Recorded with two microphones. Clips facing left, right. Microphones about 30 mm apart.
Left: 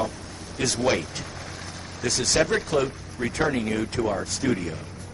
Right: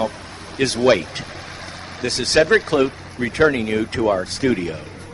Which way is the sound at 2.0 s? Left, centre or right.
Right.